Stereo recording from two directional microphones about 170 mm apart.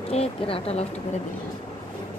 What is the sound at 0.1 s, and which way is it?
Speech, 35° left (ahead or behind).